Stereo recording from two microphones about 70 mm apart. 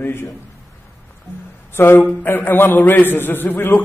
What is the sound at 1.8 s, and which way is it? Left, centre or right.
A man's voice, left.